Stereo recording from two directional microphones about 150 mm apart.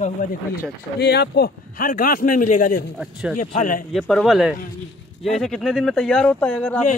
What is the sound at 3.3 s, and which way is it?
Speech, 60° left (ahead or behind).